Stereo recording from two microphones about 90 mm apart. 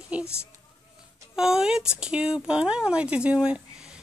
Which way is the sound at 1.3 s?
5° right (ahead or behind).